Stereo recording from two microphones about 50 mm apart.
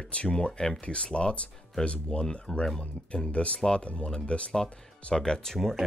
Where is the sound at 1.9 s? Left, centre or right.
Centre.